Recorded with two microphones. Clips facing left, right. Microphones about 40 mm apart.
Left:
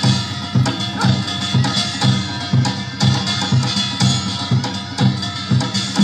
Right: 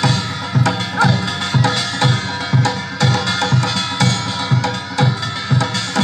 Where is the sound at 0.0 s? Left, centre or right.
Right.